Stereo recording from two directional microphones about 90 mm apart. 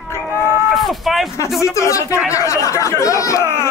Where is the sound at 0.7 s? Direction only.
Centre (ahead or behind).